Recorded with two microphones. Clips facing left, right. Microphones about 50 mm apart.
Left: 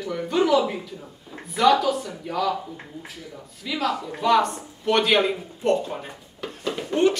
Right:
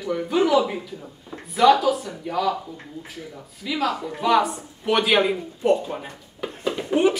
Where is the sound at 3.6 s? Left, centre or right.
Centre.